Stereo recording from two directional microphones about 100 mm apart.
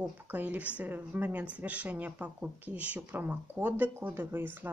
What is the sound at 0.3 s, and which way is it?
Speech, 15° right (ahead or behind).